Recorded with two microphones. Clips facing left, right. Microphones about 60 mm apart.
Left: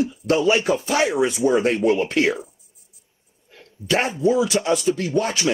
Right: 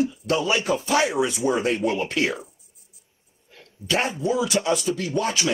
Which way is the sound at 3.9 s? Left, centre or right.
Left.